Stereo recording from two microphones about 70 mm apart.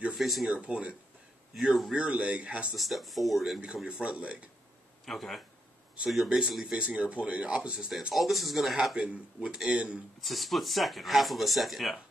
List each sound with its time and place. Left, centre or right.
0.1 s speech: centre
0.7 s speech: centre
1.6 s speech: centre
2.0 s speech: centre
2.7 s speech: centre
3.6 s speech: centre
5.0 s speech: centre
8.1 s speech: centre
8.9 s speech: centre
10.2 s speech: centre